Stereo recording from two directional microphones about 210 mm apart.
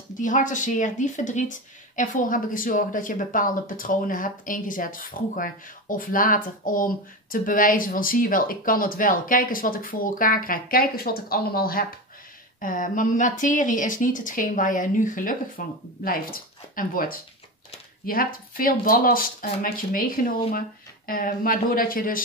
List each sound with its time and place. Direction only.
0.2 s speech: 35° left (ahead or behind)